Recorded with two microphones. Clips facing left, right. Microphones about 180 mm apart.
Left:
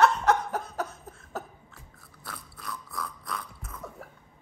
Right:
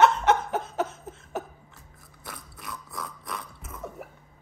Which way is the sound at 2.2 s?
20° right (ahead or behind).